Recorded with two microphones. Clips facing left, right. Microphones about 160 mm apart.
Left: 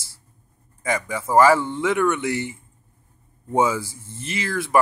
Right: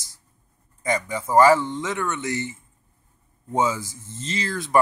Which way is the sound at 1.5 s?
10° left (ahead or behind).